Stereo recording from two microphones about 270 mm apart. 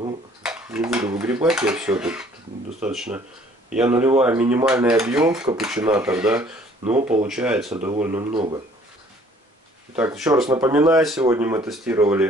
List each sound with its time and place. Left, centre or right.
0.4 s speech: centre
9.9 s speech: centre